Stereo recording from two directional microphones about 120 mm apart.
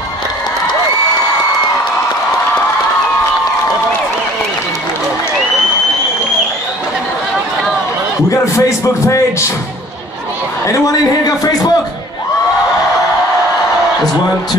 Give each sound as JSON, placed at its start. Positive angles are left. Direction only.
{"t": 8.5, "sound": "speech", "side_deg": 25}
{"t": 10.7, "sound": "a man's voice", "side_deg": 30}